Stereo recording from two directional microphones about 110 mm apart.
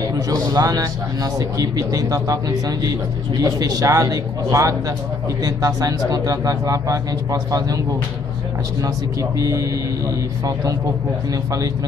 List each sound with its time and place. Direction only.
0.1 s speech: 35° right (ahead or behind)
8.8 s speech: 30° right (ahead or behind)